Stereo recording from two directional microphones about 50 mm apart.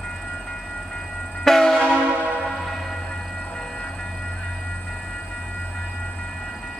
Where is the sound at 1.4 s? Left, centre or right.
Centre.